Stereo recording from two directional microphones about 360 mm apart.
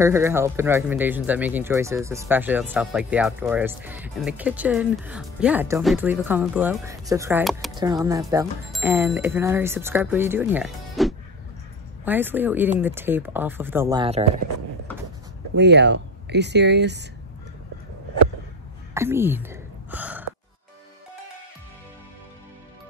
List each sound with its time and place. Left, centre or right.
0.0 s speech: centre
15.5 s speech: right
18.9 s speech: centre